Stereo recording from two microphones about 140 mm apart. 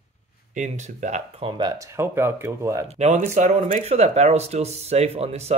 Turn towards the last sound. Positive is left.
turn(degrees=-50)  # may be behind; listen again after turning